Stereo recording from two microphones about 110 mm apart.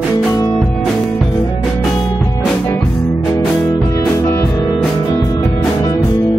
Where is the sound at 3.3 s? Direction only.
25° left (ahead or behind).